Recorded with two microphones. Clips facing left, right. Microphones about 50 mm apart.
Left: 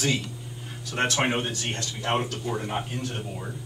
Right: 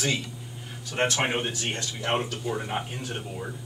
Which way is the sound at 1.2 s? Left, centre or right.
Centre.